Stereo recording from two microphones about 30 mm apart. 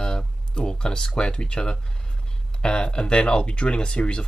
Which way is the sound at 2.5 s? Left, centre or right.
Left.